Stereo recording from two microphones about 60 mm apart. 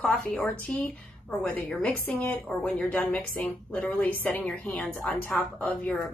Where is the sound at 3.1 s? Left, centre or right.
Left.